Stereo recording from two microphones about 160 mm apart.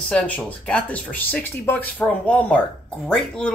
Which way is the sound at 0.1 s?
5° left (ahead or behind).